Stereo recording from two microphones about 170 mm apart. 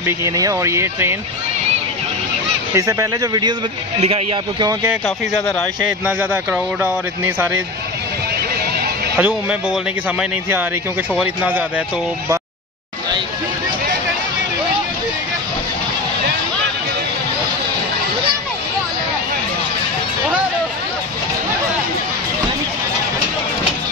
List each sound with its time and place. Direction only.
0.0 s speech: 20° right (ahead or behind)
2.7 s speech: 20° right (ahead or behind)
4.0 s speech: 35° right (ahead or behind)
5.0 s speech: 5° left (ahead or behind)
6.0 s speech: 10° right (ahead or behind)
9.1 s speech: 5° right (ahead or behind)
11.1 s speech: 10° right (ahead or behind)